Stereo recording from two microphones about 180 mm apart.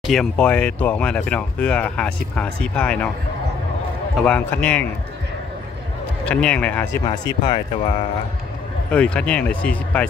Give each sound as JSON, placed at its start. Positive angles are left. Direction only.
{"t": 0.0, "sound": "speech", "side_deg": 0}
{"t": 4.2, "sound": "speech", "side_deg": 5}
{"t": 6.2, "sound": "speech", "side_deg": 5}
{"t": 7.1, "sound": "speech", "side_deg": 25}
{"t": 8.9, "sound": "speech", "side_deg": 5}